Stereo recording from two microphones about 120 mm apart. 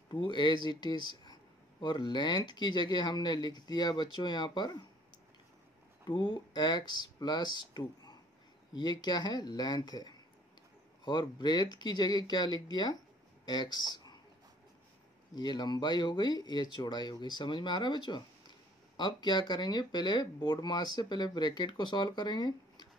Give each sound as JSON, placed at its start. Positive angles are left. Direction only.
{"t": 0.1, "sound": "speech", "side_deg": 40}
{"t": 6.0, "sound": "speech", "side_deg": 40}
{"t": 15.3, "sound": "speech", "side_deg": 35}